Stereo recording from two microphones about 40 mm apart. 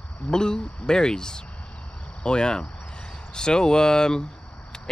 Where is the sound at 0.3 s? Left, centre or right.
Centre.